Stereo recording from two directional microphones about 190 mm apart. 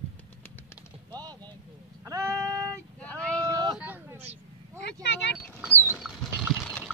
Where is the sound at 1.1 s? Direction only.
20° right (ahead or behind).